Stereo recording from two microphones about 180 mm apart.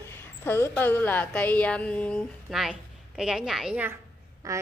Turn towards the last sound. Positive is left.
turn(degrees=-15)  # may be behind; listen again after turning